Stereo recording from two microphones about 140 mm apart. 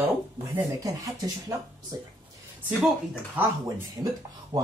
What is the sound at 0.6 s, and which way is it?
Speech, 25° right (ahead or behind).